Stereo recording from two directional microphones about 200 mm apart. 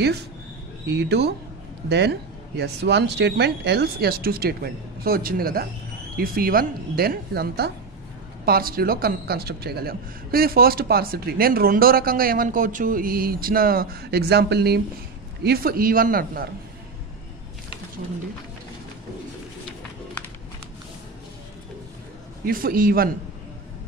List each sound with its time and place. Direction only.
0.8 s a man's voice: 60° right (ahead or behind)
22.4 s a man's voice: 45° right (ahead or behind)